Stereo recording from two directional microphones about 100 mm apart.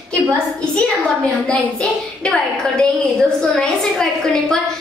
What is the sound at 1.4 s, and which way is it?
A woman's voice, 10° left (ahead or behind).